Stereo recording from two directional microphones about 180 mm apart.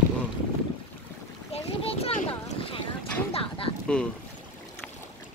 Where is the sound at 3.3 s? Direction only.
30° left (ahead or behind).